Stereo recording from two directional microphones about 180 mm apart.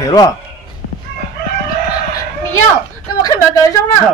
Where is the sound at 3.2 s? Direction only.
20° left (ahead or behind).